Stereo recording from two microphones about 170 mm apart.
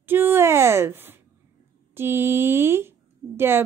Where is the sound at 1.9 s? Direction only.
15° right (ahead or behind).